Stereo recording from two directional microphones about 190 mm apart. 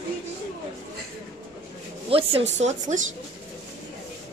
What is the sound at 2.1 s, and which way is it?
Speech, 30° right (ahead or behind).